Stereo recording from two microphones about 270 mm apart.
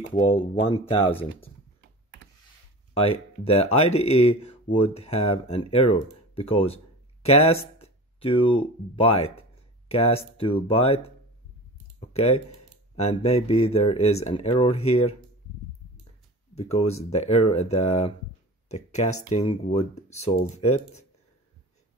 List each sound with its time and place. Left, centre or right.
0.1 s speech: centre
2.9 s speech: left
16.5 s speech: left
19.2 s speech: left